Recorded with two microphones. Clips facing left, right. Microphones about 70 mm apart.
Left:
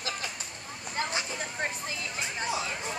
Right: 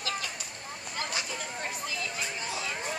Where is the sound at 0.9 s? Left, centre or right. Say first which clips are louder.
Left 3 dB; left.